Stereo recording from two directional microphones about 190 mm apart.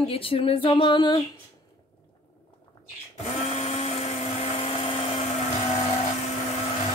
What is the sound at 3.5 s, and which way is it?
Blender, 35° left (ahead or behind).